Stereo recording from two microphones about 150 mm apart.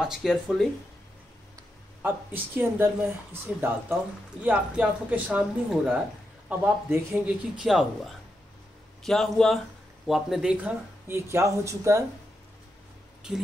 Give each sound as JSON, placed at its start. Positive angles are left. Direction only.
{"t": 0.0, "sound": "speech", "side_deg": -5}
{"t": 2.0, "sound": "speech", "side_deg": -15}
{"t": 13.2, "sound": "speech", "side_deg": -5}